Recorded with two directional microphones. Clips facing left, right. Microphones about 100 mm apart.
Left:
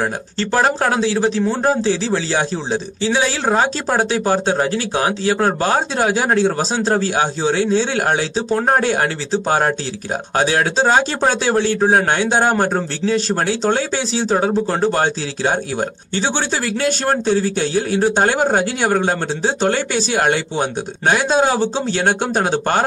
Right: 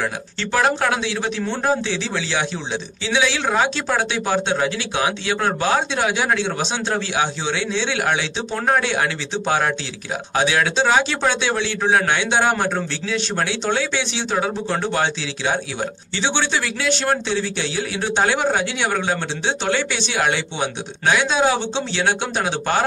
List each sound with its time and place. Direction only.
0.0 s speech: 35° left (ahead or behind)